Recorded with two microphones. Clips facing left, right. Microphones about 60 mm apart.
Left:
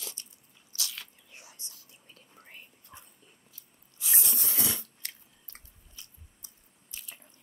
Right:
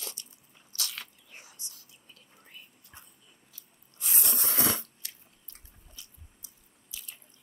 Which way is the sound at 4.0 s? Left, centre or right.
Right.